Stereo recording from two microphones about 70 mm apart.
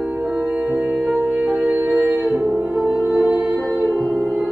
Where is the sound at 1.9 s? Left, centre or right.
Centre.